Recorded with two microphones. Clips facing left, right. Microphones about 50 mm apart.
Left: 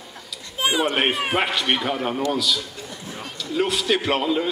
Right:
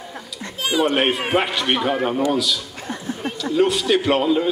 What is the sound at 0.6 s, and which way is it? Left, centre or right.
Speech, left.